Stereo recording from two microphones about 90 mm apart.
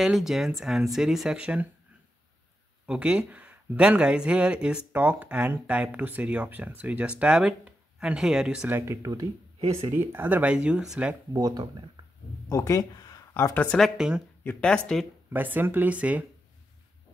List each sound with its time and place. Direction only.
0.0 s speech: centre (ahead or behind)
2.9 s speech: 10° right (ahead or behind)
8.6 s speech: 25° right (ahead or behind)
9.0 s speech: 40° right (ahead or behind)
9.6 s speech: 90° right
9.9 s speech: 25° right (ahead or behind)
11.3 s speech: 50° right (ahead or behind)
12.0 s a sound: 65° right (ahead or behind)
12.4 s speech: 35° left (ahead or behind)
13.3 s speech: 30° left (ahead or behind)
13.7 s speech: 5° right (ahead or behind)
14.4 s speech: 20° left (ahead or behind)
14.7 s speech: 10° left (ahead or behind)
15.3 s speech: 20° right (ahead or behind)